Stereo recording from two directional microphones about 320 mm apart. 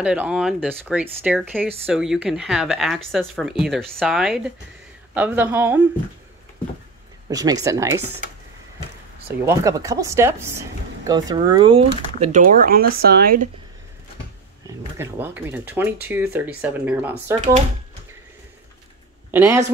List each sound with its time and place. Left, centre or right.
0.0 s speech: centre
7.2 s speech: centre
9.4 s speech: centre; by 13.5 s right
15.0 s speech: centre
19.3 s speech: centre